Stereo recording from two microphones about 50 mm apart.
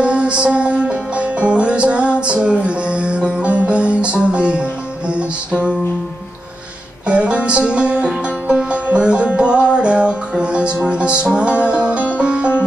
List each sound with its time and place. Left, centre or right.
0.0 s music: right
7.1 s music: right